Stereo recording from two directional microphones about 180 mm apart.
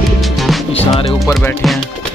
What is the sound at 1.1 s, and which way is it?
Music, 15° left (ahead or behind).